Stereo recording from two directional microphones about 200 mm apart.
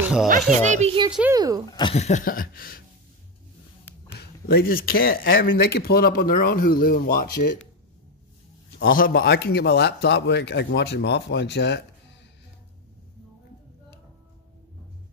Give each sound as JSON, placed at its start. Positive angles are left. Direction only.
{"t": 0.0, "sound": "a child's voice", "side_deg": -5}
{"t": 0.7, "sound": "a child's voice", "side_deg": -25}
{"t": 1.7, "sound": "speech", "side_deg": 25}
{"t": 2.0, "sound": "speech", "side_deg": 35}
{"t": 4.2, "sound": "speech", "side_deg": 55}
{"t": 8.9, "sound": "a man's voice", "side_deg": 45}